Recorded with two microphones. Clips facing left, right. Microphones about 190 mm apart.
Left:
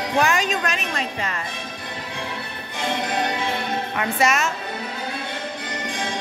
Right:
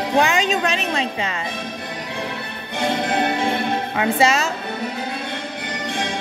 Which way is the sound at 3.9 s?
30° right (ahead or behind).